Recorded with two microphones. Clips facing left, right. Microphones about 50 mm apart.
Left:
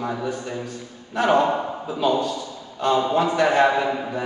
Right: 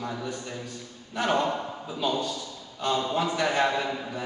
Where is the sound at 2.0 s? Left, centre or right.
Centre.